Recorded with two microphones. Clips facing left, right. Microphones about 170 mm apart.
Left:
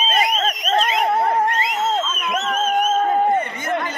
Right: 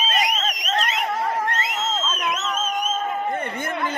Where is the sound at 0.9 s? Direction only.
60° left (ahead or behind).